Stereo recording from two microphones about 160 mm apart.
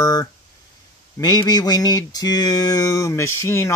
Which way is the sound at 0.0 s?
20° left (ahead or behind).